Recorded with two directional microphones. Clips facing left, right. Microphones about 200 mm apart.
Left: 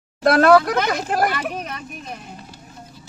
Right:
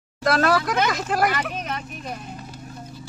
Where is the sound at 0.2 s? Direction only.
55° left (ahead or behind).